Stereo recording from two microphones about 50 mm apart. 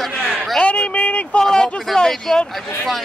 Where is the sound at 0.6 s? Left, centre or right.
Left.